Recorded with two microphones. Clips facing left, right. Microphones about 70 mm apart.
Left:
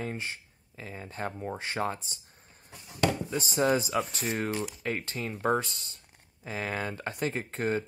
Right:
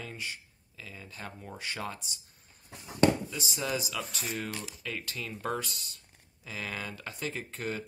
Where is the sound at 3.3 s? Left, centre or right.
Left.